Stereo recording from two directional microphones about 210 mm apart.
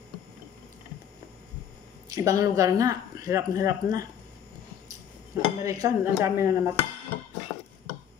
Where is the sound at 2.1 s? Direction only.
15° right (ahead or behind).